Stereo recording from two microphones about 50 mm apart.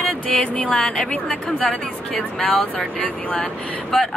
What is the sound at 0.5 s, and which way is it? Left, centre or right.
A woman's voice, left.